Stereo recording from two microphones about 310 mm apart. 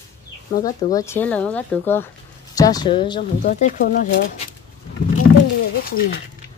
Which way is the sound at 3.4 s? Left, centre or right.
Left.